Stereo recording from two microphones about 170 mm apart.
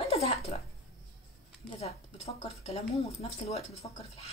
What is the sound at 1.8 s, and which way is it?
Speech, 35° left (ahead or behind).